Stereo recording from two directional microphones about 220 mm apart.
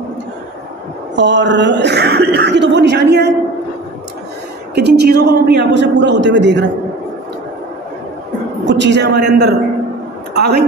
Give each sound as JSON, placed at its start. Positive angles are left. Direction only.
{"t": 1.1, "sound": "speech", "side_deg": -55}
{"t": 4.7, "sound": "a man's voice", "side_deg": -50}
{"t": 8.6, "sound": "a man's voice", "side_deg": -55}